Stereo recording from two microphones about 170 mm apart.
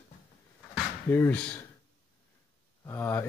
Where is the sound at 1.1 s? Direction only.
10° left (ahead or behind).